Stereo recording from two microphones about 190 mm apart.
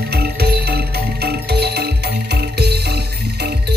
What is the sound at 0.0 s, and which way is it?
Music, 55° right (ahead or behind).